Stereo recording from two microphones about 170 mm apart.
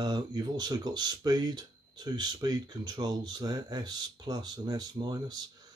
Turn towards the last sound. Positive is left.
turn(degrees=-25)  # may be behind; listen again after turning